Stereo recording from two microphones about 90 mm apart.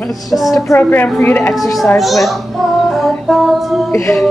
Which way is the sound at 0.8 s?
20° left (ahead or behind).